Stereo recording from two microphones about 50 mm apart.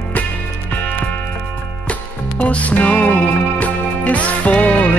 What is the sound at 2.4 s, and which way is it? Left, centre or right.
Music, left.